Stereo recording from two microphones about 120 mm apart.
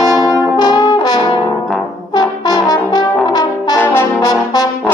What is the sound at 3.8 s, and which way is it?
Brass instrument, 20° left (ahead or behind).